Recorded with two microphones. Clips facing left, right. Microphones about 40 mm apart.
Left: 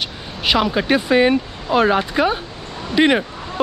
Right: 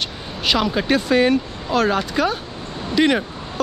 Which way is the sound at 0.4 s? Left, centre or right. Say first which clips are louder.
Left 2 dB; centre.